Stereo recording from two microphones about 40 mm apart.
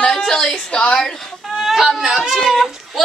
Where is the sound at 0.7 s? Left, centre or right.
Left.